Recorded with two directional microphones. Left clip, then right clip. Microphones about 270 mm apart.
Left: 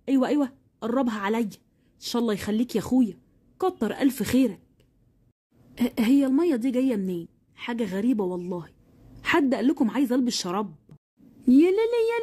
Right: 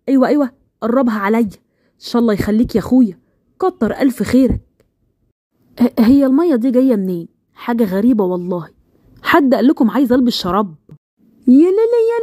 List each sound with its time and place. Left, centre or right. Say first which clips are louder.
0.0 s a woman's voice: right 10 dB; centre